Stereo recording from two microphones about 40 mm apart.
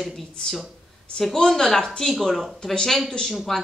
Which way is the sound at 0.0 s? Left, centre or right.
Centre.